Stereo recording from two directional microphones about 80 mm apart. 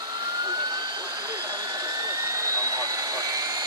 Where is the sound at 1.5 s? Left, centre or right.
Right.